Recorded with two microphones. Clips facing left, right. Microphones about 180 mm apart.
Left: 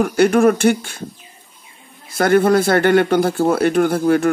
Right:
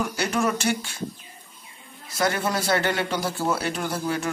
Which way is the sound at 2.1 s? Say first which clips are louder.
Left 11 dB; 55° left (ahead or behind).